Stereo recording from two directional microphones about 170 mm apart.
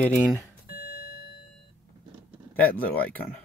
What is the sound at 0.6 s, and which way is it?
Alarm clock, 65° left (ahead or behind).